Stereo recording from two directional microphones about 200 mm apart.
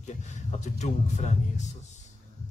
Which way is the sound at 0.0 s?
35° left (ahead or behind).